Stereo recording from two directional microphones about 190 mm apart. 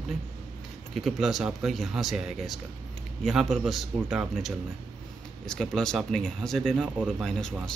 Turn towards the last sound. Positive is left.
turn(degrees=5)  # may be behind; listen again after turning